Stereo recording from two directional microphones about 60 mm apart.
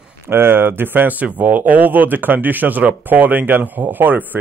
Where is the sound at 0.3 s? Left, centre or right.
Right.